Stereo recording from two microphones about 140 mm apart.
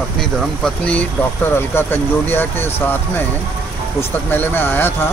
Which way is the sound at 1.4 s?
15° left (ahead or behind).